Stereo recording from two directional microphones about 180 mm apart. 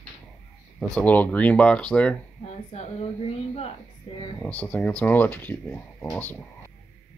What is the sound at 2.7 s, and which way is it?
Speech, 35° left (ahead or behind).